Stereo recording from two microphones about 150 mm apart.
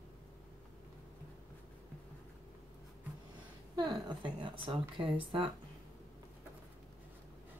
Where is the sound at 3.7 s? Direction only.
30° right (ahead or behind).